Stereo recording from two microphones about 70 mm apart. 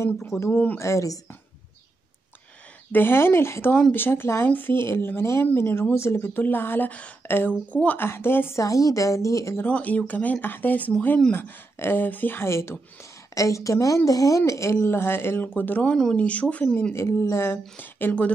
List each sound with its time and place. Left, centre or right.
0.0 s speech: left
2.9 s speech: left
7.7 s speech: centre
8.0 s speech: left
8.5 s speech: left
9.7 s speech: left
12.4 s speech: left
15.9 s speech: centre
16.2 s speech: centre
16.9 s speech: left
17.7 s speech: left